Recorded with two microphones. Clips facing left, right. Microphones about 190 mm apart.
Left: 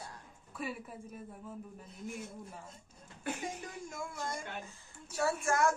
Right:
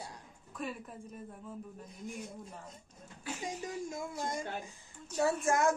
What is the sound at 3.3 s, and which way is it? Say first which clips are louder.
Speech: left 3 dB; 55° left (ahead or behind).